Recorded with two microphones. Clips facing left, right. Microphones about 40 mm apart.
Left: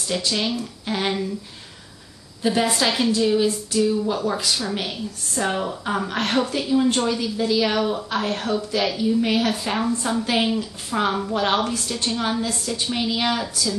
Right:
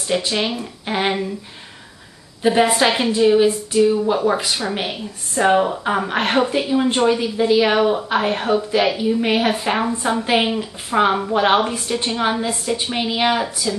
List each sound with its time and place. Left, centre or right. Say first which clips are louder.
0.0 s a woman's voice: right 4 dB; right
2.4 s a woman's voice: right 5 dB; right